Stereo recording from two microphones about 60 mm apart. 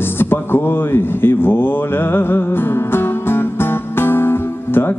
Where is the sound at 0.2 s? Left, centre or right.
Left.